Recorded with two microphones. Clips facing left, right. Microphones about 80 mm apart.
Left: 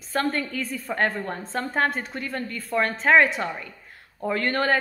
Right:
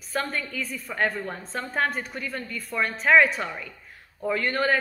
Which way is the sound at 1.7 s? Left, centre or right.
Left.